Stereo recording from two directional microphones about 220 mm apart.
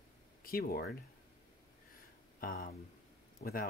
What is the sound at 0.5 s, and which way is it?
Speech, 40° left (ahead or behind).